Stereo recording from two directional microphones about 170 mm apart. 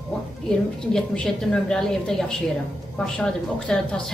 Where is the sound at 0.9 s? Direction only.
5° left (ahead or behind).